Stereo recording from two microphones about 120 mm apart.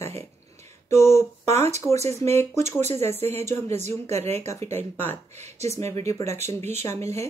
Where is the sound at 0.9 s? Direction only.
25° left (ahead or behind).